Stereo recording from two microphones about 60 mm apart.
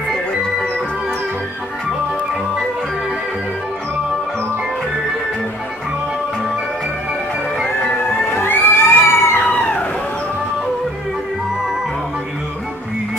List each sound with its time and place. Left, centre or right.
8.3 s children shouting: left